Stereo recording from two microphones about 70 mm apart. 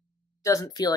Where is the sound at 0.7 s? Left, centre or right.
Left.